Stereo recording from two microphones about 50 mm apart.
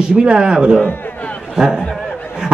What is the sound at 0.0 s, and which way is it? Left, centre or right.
A man's voice, centre.